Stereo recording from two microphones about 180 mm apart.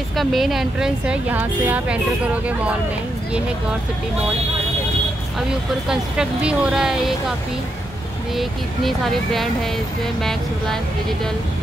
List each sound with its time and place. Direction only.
0.1 s a woman's voice: centre (ahead or behind)
5.9 s a woman's voice: 5° right (ahead or behind)
8.4 s a woman's voice: centre (ahead or behind)